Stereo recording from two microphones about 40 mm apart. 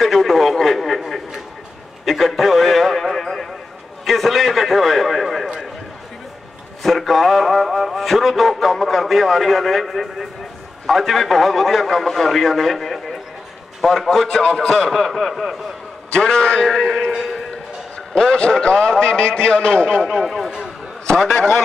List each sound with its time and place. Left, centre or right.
0.0 s radio: centre
2.0 s a sound: centre
6.8 s a man's voice: centre
14.9 s a man's voice: centre
16.1 s a man's voice: centre
20.2 s a man's voice: centre